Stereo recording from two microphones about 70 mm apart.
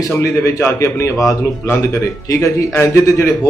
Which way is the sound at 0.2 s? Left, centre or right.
Left.